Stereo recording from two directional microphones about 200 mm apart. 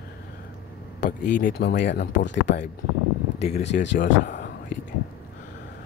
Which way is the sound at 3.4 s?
35° left (ahead or behind).